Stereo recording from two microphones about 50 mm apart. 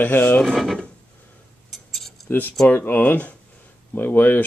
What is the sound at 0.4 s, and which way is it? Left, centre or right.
Speech, centre.